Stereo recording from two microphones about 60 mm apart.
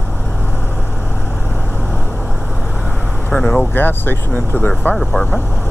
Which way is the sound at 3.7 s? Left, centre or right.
Left.